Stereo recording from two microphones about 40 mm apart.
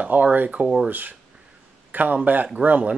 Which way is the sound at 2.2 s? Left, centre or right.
Right.